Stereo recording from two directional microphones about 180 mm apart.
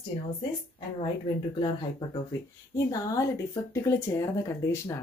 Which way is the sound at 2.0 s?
20° left (ahead or behind).